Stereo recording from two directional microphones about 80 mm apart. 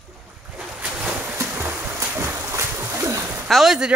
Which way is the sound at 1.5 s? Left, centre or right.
Right.